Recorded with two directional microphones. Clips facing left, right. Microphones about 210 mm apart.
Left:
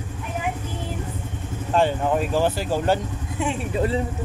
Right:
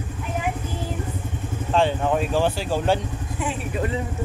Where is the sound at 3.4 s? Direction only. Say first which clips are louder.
Left 3 dB; 30° left (ahead or behind).